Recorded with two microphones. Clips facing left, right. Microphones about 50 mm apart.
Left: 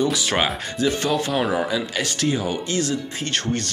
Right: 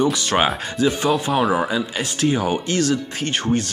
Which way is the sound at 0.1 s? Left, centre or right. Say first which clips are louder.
Right 3 dB; centre.